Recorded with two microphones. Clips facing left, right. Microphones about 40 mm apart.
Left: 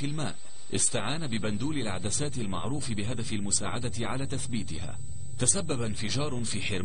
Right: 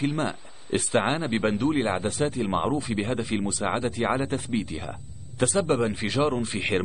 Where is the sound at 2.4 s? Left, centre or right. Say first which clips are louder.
Right 9 dB; right.